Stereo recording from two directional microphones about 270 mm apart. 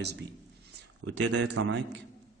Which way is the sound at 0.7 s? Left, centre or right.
Right.